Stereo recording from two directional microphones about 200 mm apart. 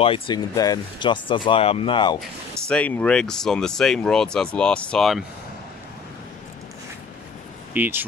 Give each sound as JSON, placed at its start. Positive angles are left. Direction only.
{"t": 0.0, "sound": "speech", "side_deg": 25}
{"t": 2.6, "sound": "speech", "side_deg": 5}
{"t": 7.7, "sound": "speech", "side_deg": -10}